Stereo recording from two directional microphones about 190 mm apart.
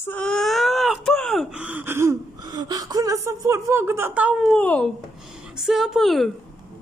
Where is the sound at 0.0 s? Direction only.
5° left (ahead or behind).